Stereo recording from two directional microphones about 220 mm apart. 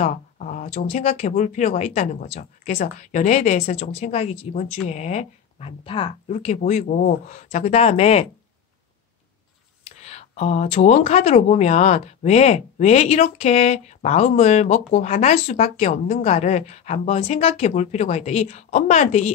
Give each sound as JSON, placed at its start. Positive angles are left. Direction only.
{"t": 0.0, "sound": "speech", "side_deg": 35}
{"t": 10.0, "sound": "speech", "side_deg": 30}